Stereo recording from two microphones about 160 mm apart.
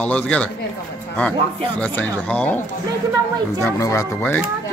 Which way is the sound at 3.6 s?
20° left (ahead or behind).